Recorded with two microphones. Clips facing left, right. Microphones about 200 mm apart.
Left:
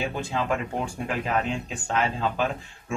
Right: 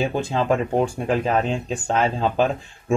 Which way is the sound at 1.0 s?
35° right (ahead or behind).